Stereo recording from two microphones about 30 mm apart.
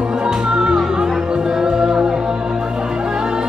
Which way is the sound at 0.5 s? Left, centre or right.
Right.